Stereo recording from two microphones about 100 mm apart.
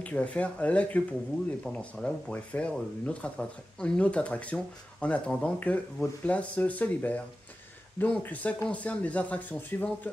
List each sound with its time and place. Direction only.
0.0 s speech: 15° left (ahead or behind)